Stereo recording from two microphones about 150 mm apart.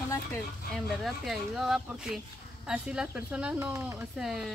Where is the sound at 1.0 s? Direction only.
Centre (ahead or behind).